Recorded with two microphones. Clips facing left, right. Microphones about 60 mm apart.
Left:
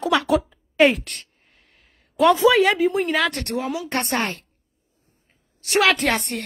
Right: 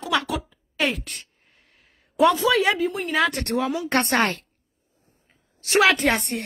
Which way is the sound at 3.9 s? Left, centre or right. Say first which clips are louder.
Right 3 dB; right.